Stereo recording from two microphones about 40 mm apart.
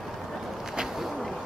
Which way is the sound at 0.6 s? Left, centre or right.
Centre.